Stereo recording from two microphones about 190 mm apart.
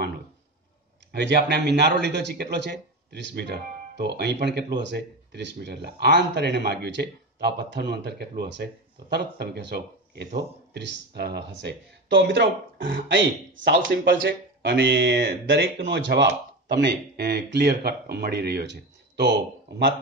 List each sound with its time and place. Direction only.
1.1 s speech: 60° right (ahead or behind)